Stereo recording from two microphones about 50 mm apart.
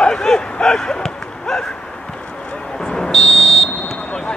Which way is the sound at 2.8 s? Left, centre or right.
Centre.